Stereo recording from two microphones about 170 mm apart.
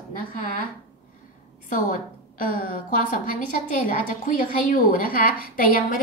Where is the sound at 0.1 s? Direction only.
55° left (ahead or behind).